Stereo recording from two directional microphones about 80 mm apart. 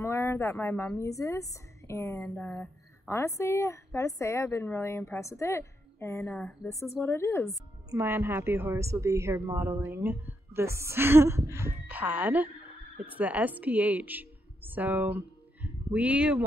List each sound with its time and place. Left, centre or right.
0.0 s a woman's voice: left
8.0 s a woman's voice: right
9.5 s a woman's voice: right
11.9 s a woman's voice: right